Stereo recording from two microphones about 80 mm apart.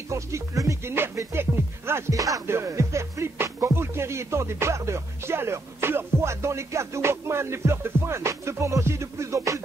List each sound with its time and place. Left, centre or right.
0.1 s music: right
2.4 s music: right